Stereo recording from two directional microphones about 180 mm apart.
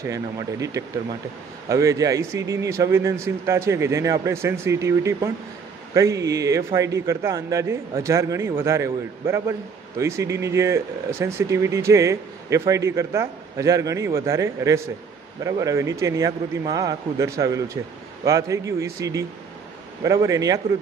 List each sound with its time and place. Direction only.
0.0 s a man's voice: 20° right (ahead or behind)